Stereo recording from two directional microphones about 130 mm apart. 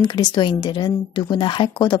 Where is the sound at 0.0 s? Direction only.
35° left (ahead or behind).